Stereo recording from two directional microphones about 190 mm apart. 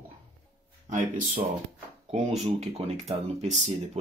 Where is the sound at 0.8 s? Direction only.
45° right (ahead or behind).